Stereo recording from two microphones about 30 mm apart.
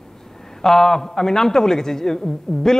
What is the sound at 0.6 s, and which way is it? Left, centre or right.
A man's voice, centre.